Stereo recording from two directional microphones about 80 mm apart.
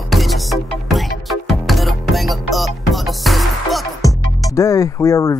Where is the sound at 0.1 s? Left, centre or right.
Centre.